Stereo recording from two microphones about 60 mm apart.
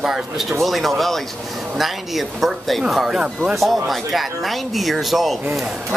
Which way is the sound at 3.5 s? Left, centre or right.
Centre.